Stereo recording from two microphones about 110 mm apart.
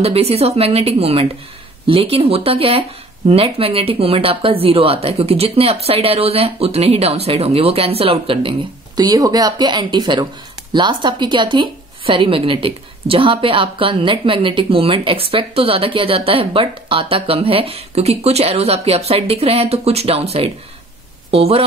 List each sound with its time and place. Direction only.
0.0 s a woman's voice: 65° right (ahead or behind)
8.9 s a woman's voice: 35° right (ahead or behind); by 21.6 s 60° right (ahead or behind)